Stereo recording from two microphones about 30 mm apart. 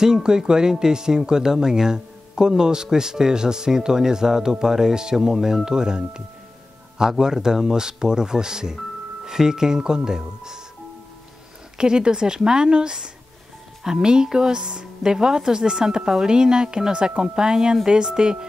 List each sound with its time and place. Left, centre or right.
0.0 s speech: right
11.8 s speech: right